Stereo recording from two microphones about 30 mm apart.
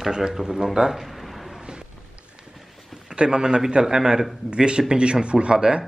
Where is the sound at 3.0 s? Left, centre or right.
Right.